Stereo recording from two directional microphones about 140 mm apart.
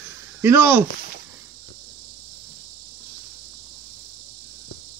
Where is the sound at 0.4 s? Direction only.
20° right (ahead or behind).